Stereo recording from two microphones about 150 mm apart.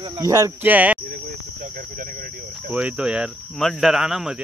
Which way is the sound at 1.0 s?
80° right.